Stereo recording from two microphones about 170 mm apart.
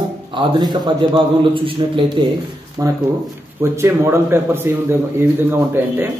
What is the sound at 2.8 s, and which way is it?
A man's voice, 20° right (ahead or behind).